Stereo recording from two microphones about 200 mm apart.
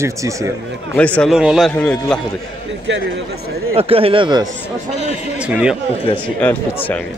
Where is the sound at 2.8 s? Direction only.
60° right (ahead or behind).